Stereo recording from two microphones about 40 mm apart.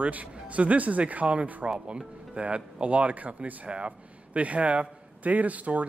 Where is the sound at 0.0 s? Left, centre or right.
Right.